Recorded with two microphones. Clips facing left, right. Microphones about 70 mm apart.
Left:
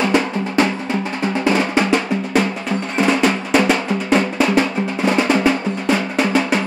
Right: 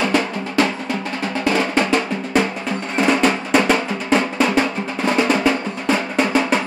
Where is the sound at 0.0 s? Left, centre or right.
Centre.